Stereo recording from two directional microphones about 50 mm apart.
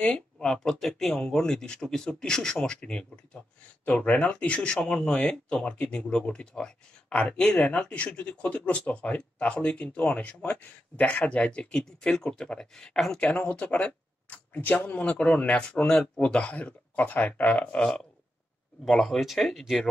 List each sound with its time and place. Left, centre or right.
0.0 s speech: centre
3.8 s speech: left
13.3 s speech: left
18.9 s speech: centre